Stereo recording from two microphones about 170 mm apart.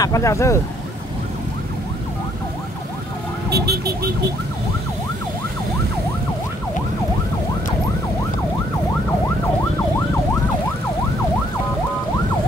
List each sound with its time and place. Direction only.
0.0 s speech: 20° left (ahead or behind)
3.4 s emergency vehicle: 70° right (ahead or behind)